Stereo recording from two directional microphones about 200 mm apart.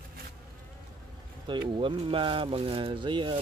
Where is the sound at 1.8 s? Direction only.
25° right (ahead or behind).